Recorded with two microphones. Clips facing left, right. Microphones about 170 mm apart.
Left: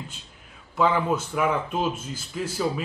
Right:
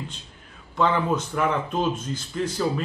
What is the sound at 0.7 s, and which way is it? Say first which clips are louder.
Speech: even; 5° left (ahead or behind).